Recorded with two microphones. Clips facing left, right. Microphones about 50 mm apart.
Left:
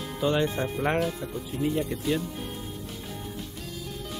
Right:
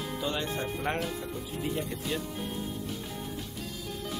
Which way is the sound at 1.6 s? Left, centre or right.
Centre.